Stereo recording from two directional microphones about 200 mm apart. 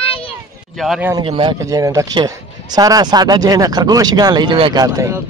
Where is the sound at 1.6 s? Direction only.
15° right (ahead or behind).